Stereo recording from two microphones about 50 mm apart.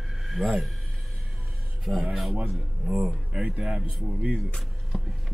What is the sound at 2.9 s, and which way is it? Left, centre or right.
Speech, centre.